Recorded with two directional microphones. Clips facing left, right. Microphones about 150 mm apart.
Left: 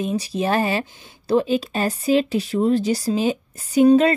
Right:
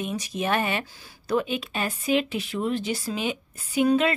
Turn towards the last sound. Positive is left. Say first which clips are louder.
# left 7 dB
turn(degrees=40)  # may be behind; listen again after turning